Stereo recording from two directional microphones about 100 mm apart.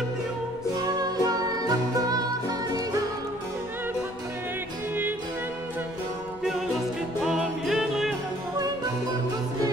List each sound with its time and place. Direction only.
0.7 s music: 40° right (ahead or behind)
6.4 s music: 5° right (ahead or behind)